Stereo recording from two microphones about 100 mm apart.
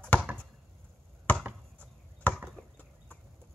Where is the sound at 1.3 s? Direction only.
15° left (ahead or behind).